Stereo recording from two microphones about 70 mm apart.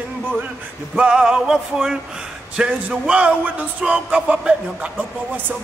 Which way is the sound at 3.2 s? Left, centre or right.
Right.